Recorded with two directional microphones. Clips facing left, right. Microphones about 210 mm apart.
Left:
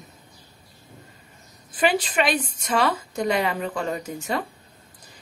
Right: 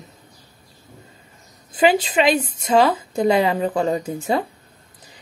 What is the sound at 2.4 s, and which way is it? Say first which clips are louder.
A woman's voice: right 7 dB; 25° right (ahead or behind).